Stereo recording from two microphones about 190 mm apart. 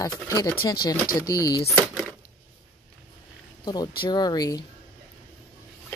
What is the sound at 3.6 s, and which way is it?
Speech, 20° left (ahead or behind).